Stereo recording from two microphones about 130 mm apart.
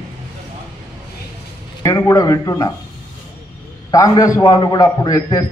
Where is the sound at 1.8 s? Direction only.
25° left (ahead or behind).